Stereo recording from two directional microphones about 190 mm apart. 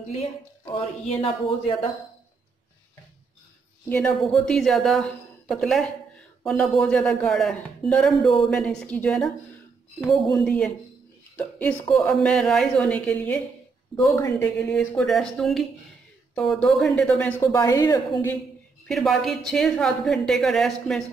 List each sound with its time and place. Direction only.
0.7 s speech: 30° left (ahead or behind)
3.9 s a woman's voice: 5° left (ahead or behind)
14.6 s a woman's voice: 5° left (ahead or behind)
18.9 s a woman's voice: centre (ahead or behind)